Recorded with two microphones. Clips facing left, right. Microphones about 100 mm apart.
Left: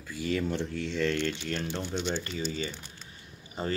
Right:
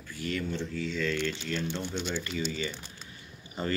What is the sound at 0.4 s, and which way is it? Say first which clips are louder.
Speech: left 2 dB; 80° left.